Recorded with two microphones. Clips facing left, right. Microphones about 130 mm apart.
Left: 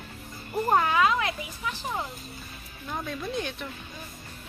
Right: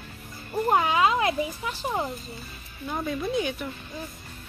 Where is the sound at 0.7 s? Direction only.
15° right (ahead or behind).